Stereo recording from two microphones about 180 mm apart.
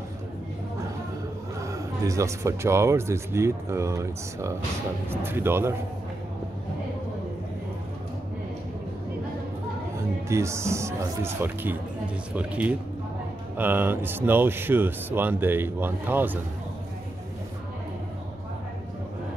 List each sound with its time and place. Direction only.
1.6 s speech: 20° right (ahead or behind)
10.2 s speech: 15° right (ahead or behind)